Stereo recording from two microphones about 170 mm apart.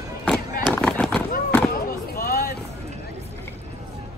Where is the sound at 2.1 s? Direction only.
60° left (ahead or behind).